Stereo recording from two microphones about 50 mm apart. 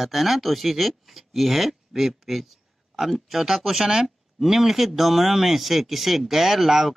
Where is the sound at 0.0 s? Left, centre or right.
Centre.